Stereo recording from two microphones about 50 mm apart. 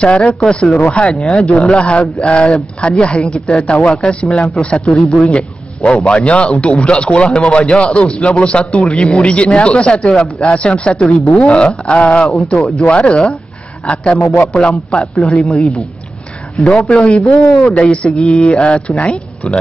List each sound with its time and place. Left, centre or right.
0.0 s a man's voice: left
14.9 s a man's voice: left
16.5 s a woman's voice: left